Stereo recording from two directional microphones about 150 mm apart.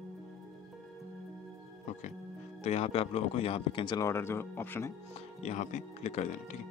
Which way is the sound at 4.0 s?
20° left (ahead or behind).